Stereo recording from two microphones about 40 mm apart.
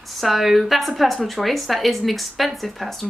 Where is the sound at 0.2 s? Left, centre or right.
Centre.